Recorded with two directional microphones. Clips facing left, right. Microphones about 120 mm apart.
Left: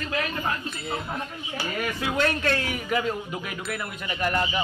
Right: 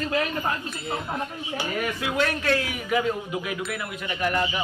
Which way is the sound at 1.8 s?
5° right (ahead or behind).